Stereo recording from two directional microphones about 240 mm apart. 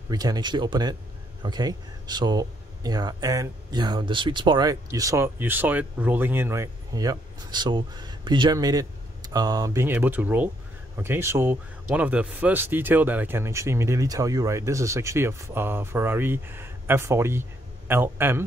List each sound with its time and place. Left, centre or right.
0.1 s speech: centre